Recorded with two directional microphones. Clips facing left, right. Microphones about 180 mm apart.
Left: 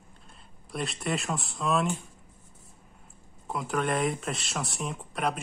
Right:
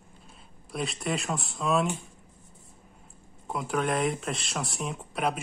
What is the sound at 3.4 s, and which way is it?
Speech, centre (ahead or behind).